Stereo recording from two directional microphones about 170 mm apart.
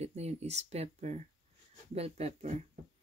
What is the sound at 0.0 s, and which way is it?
Speech, 40° right (ahead or behind).